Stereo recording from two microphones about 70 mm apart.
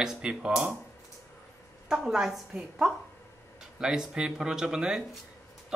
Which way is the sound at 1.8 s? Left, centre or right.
Centre.